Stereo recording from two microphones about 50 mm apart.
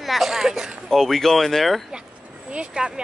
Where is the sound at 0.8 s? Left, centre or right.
Centre.